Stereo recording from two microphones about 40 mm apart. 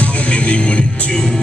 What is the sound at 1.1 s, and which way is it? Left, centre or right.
Music, centre.